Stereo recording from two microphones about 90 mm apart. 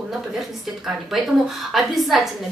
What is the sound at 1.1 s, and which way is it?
Speech, 5° right (ahead or behind).